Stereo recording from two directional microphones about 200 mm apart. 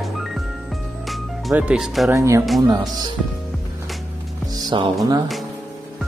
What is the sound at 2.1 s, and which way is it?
Speech, 15° right (ahead or behind).